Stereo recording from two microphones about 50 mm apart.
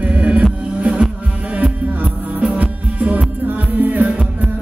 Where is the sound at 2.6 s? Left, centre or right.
Right.